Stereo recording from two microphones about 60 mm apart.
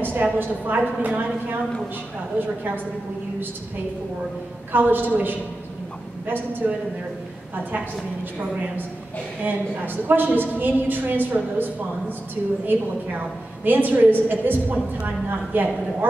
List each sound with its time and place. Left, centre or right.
0.0 s a woman's voice: right
4.7 s a woman's voice: right
8.4 s a woman's voice: right
10.0 s a woman's voice: right
13.7 s a woman's voice: right